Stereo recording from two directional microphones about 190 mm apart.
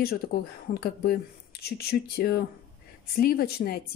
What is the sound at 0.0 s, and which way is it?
Speech, 55° left (ahead or behind).